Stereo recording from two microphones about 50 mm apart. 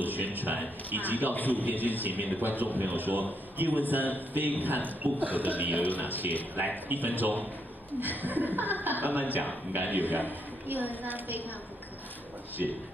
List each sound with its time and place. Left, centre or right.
0.0 s a man's voice: right
1.3 s a man's voice: left
1.6 s a man's voice: right